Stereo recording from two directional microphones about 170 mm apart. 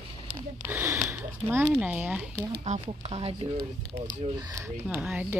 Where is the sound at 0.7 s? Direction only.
10° right (ahead or behind).